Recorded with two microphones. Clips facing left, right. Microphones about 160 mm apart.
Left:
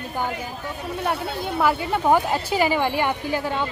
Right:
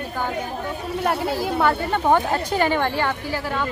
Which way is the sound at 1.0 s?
5° right (ahead or behind).